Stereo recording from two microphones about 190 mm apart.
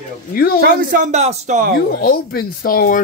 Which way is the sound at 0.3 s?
50° left (ahead or behind).